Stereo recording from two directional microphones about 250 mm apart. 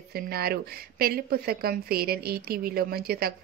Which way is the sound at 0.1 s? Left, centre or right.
Right.